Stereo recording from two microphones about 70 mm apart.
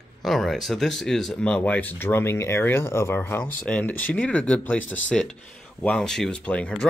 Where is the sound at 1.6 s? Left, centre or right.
Left.